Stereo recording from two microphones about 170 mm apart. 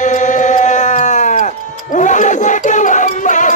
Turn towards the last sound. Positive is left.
turn(degrees=45)  # may be behind; listen again after turning